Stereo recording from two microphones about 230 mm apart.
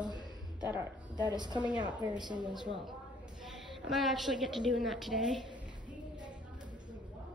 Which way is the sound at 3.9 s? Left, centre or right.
Centre.